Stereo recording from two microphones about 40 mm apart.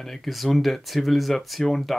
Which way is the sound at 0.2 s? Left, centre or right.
Centre.